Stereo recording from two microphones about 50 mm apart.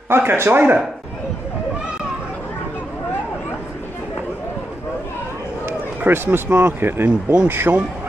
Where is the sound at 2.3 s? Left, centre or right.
Left.